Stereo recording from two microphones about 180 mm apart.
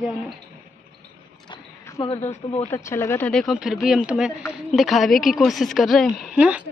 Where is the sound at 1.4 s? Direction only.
15° left (ahead or behind).